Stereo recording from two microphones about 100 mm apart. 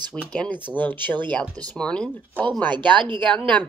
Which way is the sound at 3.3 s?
5° left (ahead or behind).